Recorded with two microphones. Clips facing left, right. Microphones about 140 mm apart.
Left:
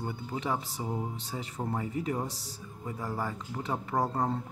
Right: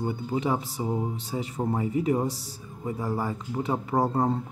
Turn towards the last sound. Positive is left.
turn(degrees=-20)  # may be behind; listen again after turning